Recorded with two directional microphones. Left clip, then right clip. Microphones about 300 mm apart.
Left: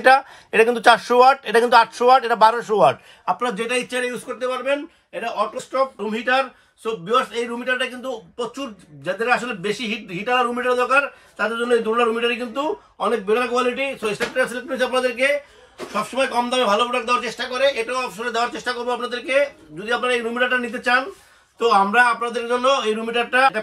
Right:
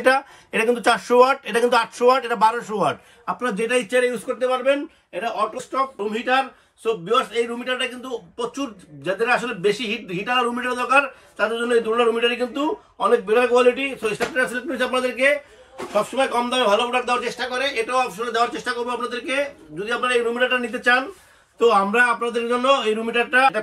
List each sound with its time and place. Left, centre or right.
0.0 s speech: left
3.3 s a man's voice: centre